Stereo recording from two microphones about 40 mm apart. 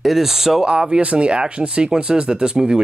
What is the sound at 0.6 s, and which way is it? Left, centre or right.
Speech, right.